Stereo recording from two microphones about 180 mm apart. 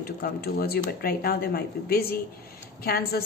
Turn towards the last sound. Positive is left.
turn(degrees=55)  # may be behind; listen again after turning